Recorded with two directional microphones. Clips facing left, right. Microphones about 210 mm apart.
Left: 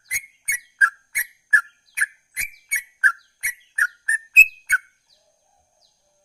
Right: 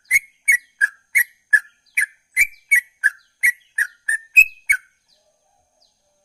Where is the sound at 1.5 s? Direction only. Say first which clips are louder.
Even; 10° right (ahead or behind).